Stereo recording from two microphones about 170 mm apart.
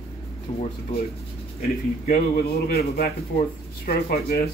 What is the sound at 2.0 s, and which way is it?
Speech, 60° left (ahead or behind).